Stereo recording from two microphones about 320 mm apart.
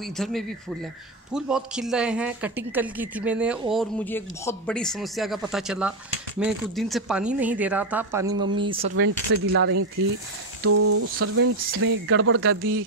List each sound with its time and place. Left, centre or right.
0.2 s speech: centre
8.9 s speech: right